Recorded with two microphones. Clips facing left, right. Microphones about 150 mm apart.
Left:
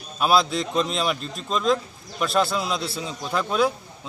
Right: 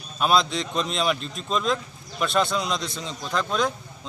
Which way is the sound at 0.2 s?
5° left (ahead or behind).